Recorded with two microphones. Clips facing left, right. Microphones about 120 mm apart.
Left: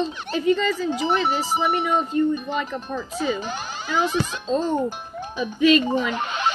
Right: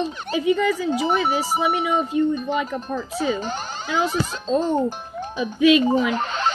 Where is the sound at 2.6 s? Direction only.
10° right (ahead or behind).